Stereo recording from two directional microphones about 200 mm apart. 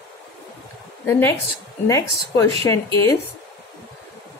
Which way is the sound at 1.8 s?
15° left (ahead or behind).